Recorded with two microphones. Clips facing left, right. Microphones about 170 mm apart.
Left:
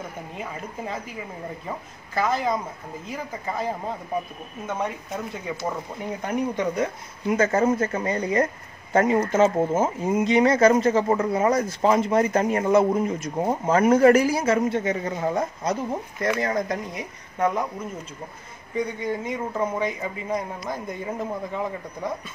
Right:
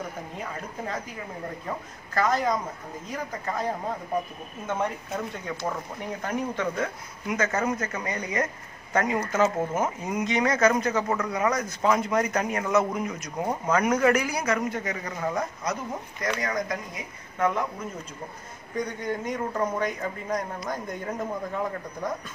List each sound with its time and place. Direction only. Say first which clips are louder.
0.4 s speech: left 3 dB; 10° left (ahead or behind)
4.7 s speech: even; centre (ahead or behind)
6.2 s speech: left 4 dB; 15° left (ahead or behind)
7.2 s speech: left 6 dB; 30° left (ahead or behind)
17.4 s speech: left 2 dB; 15° left (ahead or behind)
18.8 s speech: left 3 dB; 5° left (ahead or behind)